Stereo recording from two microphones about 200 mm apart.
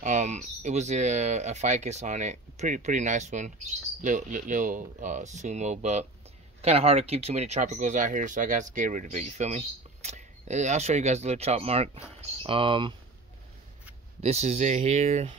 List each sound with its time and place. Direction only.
0.0 s speech: 35° right (ahead or behind)
14.2 s speech: 35° right (ahead or behind)